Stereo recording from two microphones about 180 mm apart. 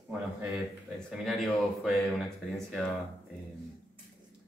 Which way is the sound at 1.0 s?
Centre (ahead or behind).